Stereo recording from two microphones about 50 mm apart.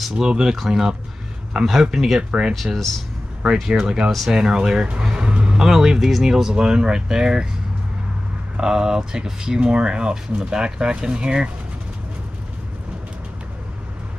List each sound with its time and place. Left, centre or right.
0.1 s speech: centre
2.5 s speech: centre
5.1 s vehicle: right
5.7 s speech: centre
8.5 s speech: centre